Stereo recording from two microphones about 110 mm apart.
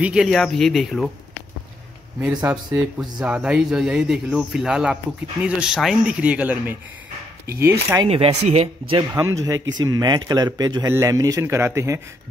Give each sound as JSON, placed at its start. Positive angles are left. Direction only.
{"t": 0.0, "sound": "speech", "side_deg": -5}
{"t": 0.3, "sound": "speech", "side_deg": 5}
{"t": 2.1, "sound": "speech", "side_deg": -15}
{"t": 2.5, "sound": "speech", "side_deg": -5}
{"t": 8.4, "sound": "speech", "side_deg": -75}
{"t": 9.1, "sound": "a man's voice", "side_deg": -30}